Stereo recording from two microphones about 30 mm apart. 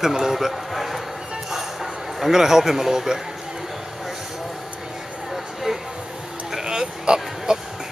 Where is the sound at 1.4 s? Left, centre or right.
Centre.